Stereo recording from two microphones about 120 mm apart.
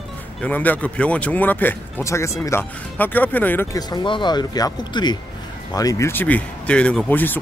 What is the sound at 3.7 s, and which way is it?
Speech, 40° left (ahead or behind).